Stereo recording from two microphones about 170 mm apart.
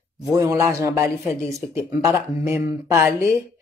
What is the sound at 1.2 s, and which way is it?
Speech, 5° left (ahead or behind).